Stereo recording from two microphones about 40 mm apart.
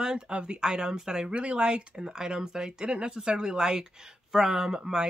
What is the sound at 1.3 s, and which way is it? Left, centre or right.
Speech, right.